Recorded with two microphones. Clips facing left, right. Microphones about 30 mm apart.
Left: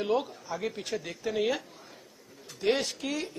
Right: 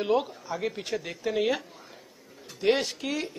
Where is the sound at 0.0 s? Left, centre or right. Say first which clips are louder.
Right 3 dB; centre.